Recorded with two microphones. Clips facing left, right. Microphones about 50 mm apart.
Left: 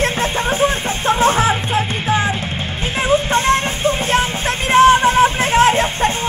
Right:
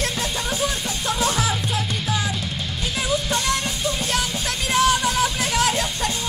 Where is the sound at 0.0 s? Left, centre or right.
Left.